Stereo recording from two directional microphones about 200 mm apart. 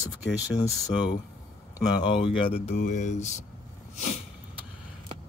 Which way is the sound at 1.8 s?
20° left (ahead or behind).